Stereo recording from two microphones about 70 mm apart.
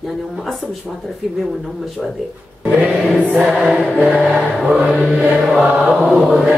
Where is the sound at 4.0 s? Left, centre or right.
Centre.